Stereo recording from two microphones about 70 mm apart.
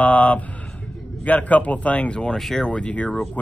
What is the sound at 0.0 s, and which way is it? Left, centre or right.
Speech, left.